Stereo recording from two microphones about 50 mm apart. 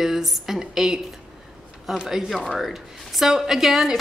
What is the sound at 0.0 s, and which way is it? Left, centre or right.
Speech, centre.